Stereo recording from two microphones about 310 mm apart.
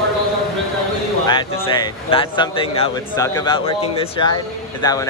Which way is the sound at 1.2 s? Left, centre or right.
Centre.